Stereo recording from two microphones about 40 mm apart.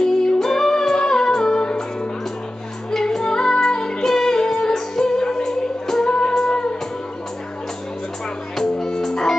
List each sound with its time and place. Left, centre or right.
0.0 s music: centre
2.9 s music: centre
8.5 s music: centre